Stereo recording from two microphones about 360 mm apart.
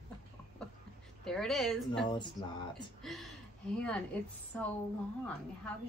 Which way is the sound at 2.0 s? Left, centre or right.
Centre.